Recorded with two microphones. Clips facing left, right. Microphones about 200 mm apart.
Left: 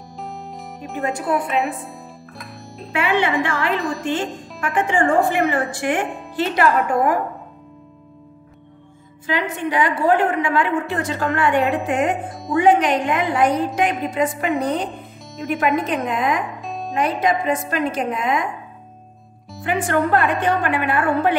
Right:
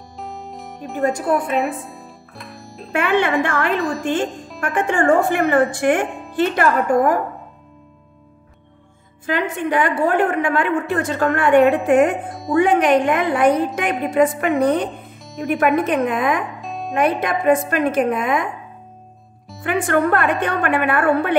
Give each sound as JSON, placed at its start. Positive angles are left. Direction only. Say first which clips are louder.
{"t": 0.2, "sound": "music", "louder": "right 1 dB", "side_deg": 0}
{"t": 2.9, "sound": "a woman's voice", "louder": "right 2 dB", "side_deg": -50}
{"t": 9.2, "sound": "a woman's voice", "louder": "right 2 dB", "side_deg": -50}
{"t": 16.6, "sound": "music", "louder": "even", "side_deg": 0}
{"t": 16.9, "sound": "a woman's voice", "louder": "right 1 dB", "side_deg": -60}
{"t": 19.6, "sound": "a woman's voice", "louder": "right 2 dB", "side_deg": -55}